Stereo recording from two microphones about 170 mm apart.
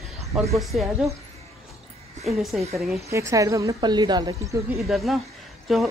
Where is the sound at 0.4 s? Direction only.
Centre (ahead or behind).